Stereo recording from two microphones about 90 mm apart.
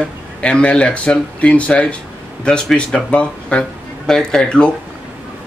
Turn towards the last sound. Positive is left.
turn(degrees=10)  # may be behind; listen again after turning